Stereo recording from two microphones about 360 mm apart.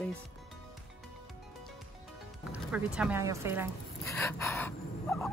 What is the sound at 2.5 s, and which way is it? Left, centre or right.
Speech, centre.